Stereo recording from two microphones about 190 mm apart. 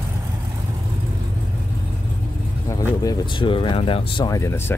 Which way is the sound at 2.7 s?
20° left (ahead or behind).